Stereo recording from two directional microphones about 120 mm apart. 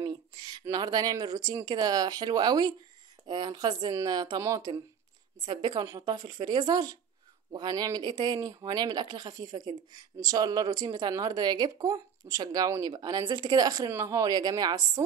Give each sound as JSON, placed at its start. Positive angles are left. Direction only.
{"t": 0.0, "sound": "speech", "side_deg": -35}